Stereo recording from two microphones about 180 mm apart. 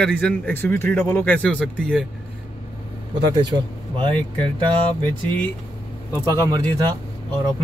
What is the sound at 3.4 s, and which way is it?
Speech, 25° right (ahead or behind).